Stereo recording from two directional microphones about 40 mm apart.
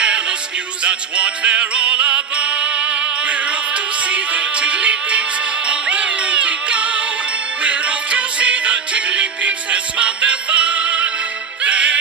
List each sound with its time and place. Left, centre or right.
0.0 s music: right